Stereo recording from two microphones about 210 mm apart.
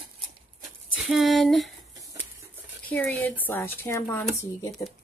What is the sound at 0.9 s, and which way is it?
Speech, centre (ahead or behind).